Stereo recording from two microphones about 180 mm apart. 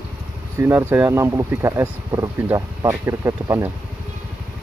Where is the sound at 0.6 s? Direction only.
15° right (ahead or behind).